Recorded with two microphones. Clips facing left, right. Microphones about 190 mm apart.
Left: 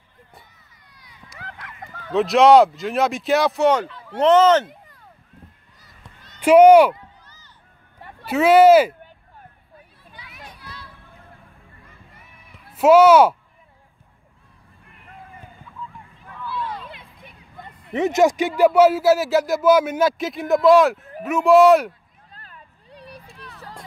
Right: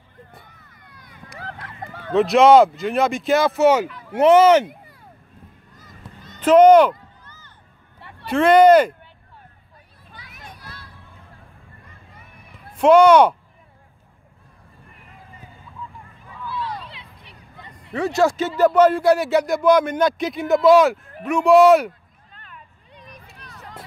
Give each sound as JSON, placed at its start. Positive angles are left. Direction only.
{"t": 0.4, "sound": "a sound", "side_deg": -55}
{"t": 1.4, "sound": "a sound", "side_deg": -35}
{"t": 2.1, "sound": "speech", "side_deg": 0}
{"t": 5.8, "sound": "honk", "side_deg": -50}
{"t": 6.4, "sound": "speech", "side_deg": 10}
{"t": 7.2, "sound": "a sound", "side_deg": -55}
{"t": 8.3, "sound": "speech", "side_deg": 5}
{"t": 10.1, "sound": "children playing", "side_deg": -45}
{"t": 12.7, "sound": "speech", "side_deg": 5}
{"t": 16.5, "sound": "music", "side_deg": 50}
{"t": 17.9, "sound": "speech", "side_deg": 20}
{"t": 22.3, "sound": "a sound", "side_deg": 35}